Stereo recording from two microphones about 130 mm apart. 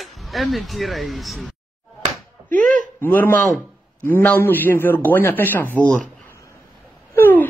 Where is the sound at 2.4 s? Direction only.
10° left (ahead or behind).